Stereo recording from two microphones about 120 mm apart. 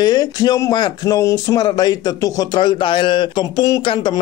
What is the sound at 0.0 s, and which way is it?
Speech, 35° left (ahead or behind).